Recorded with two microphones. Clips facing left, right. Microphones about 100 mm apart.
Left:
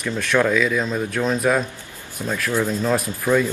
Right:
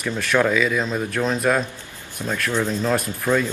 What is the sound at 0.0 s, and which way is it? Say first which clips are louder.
Speech: even; centre (ahead or behind).